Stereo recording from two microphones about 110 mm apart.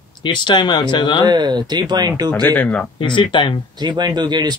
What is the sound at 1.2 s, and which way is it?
Speech, 40° right (ahead or behind).